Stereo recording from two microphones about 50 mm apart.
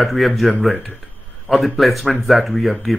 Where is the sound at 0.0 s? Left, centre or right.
Centre.